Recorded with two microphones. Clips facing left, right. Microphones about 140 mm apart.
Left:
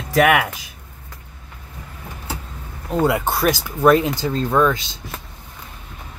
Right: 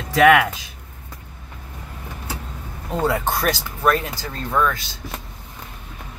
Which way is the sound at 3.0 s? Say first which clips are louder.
Left 3 dB; 10° left (ahead or behind).